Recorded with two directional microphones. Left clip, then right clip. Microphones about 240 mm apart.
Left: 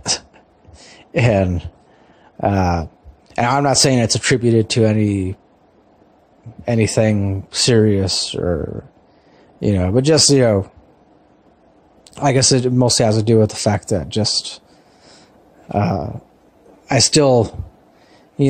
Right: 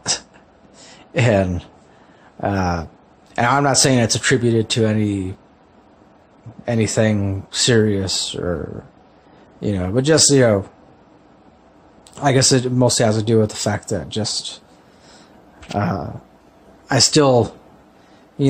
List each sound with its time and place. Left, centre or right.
0.7 s a sound: left
2.4 s speech: centre
6.6 s speech: centre
12.2 s speech: left
15.7 s speech: centre